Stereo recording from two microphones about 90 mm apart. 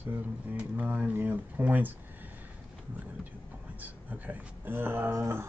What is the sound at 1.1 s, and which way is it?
Music, 20° right (ahead or behind).